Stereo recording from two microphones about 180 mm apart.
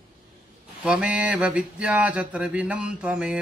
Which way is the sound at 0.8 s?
5° right (ahead or behind).